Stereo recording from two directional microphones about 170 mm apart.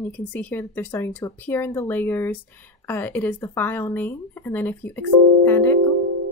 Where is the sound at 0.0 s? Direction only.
10° left (ahead or behind).